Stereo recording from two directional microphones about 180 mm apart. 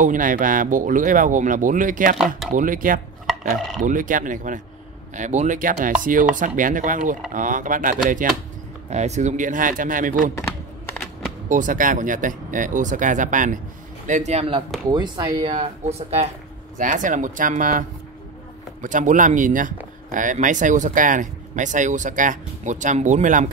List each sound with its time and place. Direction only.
0.0 s speech: 50° right (ahead or behind)
8.9 s speech: 40° right (ahead or behind)
11.4 s speech: 45° right (ahead or behind)
14.9 s speech: 20° right (ahead or behind); by 23.5 s 40° right (ahead or behind)